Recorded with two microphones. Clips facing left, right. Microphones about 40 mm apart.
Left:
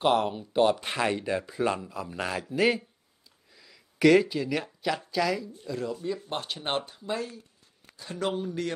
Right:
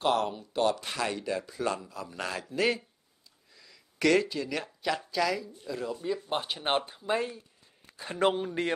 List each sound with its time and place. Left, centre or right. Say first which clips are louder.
0.3 s speech: left 4 dB; left; by 7.2 s centre
7.2 s speech: right 3 dB; right